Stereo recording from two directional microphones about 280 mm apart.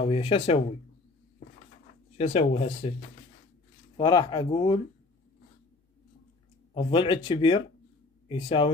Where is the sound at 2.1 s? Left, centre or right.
Left.